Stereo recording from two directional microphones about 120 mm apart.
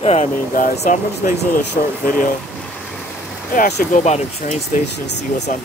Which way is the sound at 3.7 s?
75° left (ahead or behind).